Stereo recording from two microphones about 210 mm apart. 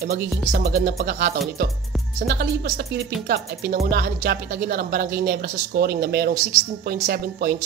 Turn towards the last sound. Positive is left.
turn(degrees=-45)  # may be behind; listen again after turning